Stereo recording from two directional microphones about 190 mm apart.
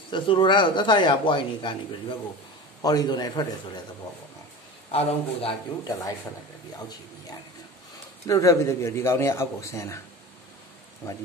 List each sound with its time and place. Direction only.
0.1 s speech: 25° left (ahead or behind)
4.9 s speech: 30° left (ahead or behind)
8.3 s a man's voice: 15° left (ahead or behind)